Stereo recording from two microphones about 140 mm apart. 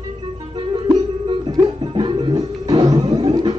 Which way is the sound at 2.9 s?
30° right (ahead or behind).